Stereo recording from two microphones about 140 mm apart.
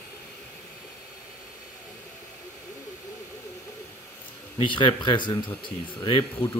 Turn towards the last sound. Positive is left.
turn(degrees=35)  # may be behind; listen again after turning